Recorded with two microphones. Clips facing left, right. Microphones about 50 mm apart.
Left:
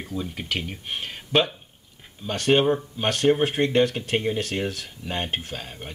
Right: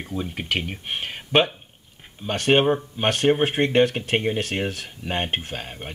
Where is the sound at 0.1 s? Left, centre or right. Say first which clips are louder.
Right 3 dB; right.